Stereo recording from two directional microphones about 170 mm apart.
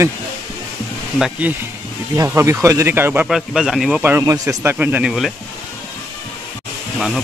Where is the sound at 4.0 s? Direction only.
15° right (ahead or behind).